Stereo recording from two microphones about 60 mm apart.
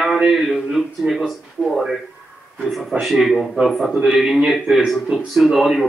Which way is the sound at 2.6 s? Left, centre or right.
Centre.